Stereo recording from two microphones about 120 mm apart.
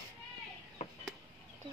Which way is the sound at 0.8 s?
60° left (ahead or behind).